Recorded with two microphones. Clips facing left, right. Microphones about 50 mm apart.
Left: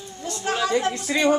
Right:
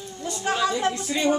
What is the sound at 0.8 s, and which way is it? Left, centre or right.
Speech, centre.